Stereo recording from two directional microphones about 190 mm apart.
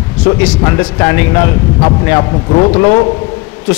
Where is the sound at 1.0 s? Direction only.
20° left (ahead or behind).